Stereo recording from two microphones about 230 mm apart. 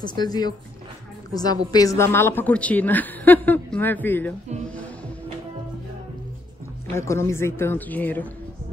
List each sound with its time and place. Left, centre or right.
0.0 s a woman's voice: centre
7.0 s a woman's voice: centre